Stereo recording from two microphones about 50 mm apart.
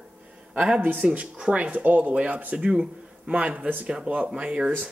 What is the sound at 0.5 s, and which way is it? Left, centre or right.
A man's voice, right.